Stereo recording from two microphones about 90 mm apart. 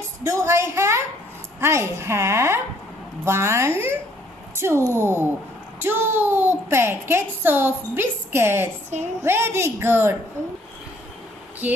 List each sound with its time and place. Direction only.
0.2 s a woman's voice: 35° right (ahead or behind)
11.6 s a child's voice: 20° right (ahead or behind)